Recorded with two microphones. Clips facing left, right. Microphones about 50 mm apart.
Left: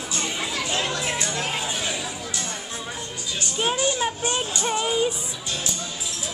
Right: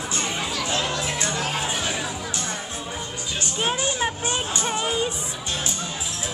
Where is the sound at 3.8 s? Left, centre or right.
Right.